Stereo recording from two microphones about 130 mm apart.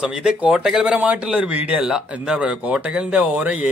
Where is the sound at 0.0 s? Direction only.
5° right (ahead or behind).